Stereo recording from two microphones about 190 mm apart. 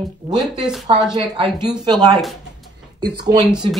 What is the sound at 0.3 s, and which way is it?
Speech, 20° right (ahead or behind).